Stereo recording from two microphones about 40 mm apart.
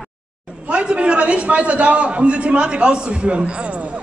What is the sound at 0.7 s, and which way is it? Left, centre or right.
A man's voice, right.